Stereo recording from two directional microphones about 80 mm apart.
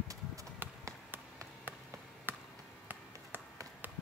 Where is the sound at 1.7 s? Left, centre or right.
Right.